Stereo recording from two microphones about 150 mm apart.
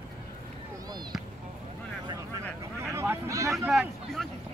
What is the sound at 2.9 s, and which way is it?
Vehicle, 15° right (ahead or behind).